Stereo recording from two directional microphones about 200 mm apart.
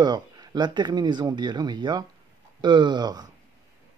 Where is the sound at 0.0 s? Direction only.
20° right (ahead or behind).